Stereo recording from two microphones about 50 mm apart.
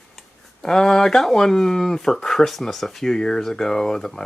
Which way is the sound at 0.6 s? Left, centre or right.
Centre.